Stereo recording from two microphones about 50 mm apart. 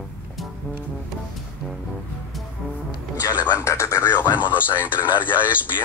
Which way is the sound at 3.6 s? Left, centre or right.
Left.